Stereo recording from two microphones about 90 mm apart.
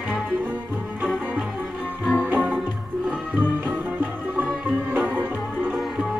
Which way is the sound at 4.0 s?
20° right (ahead or behind).